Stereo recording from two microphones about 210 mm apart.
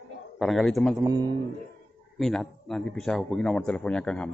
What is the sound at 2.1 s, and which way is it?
A man's voice, centre (ahead or behind).